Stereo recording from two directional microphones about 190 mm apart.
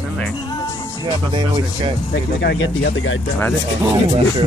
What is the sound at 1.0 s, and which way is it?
Speech, 25° right (ahead or behind).